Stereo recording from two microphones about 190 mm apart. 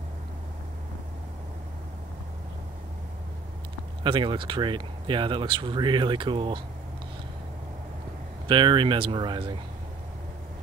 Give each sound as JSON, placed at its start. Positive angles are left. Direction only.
{"t": 4.0, "sound": "speech", "side_deg": -25}
{"t": 8.5, "sound": "speech", "side_deg": -25}